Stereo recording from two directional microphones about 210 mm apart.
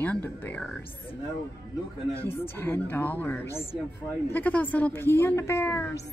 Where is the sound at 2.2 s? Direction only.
10° left (ahead or behind).